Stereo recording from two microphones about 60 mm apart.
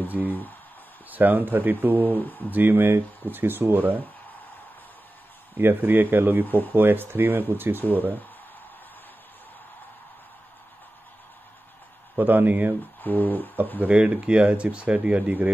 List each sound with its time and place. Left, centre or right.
0.2 s speech: centre
1.1 s speech: right
2.0 s speech: left
2.4 s speech: right
5.6 s speech: right
6.4 s speech: left
6.7 s speech: right
12.2 s speech: right
13.0 s speech: left
13.8 s speech: right